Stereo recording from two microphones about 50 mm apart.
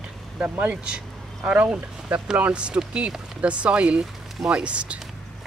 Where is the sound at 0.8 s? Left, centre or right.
Right.